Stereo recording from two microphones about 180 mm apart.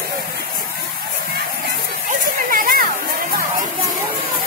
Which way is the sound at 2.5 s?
50° right (ahead or behind).